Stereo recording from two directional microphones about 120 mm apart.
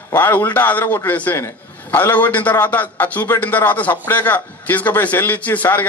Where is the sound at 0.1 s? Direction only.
20° left (ahead or behind).